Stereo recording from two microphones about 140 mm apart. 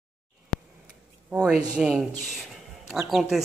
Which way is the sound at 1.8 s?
5° right (ahead or behind).